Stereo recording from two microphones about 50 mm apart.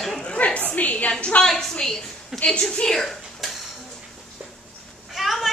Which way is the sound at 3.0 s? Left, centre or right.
Centre.